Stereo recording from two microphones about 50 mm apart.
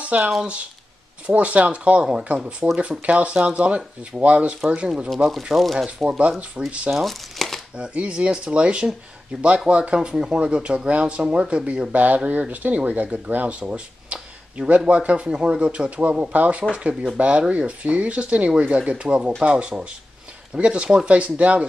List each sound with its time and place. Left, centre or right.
0.0 s speech: right
5.5 s speech: centre
5.9 s speech: centre
6.9 s crumpling: centre
7.7 s speech: right